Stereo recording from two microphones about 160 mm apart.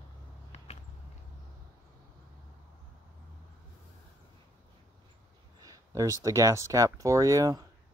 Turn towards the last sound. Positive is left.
turn(degrees=-20)  # may be behind; listen again after turning